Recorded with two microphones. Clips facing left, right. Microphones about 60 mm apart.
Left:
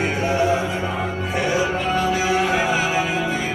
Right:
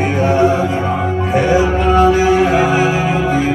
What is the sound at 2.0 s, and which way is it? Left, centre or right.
Music, right.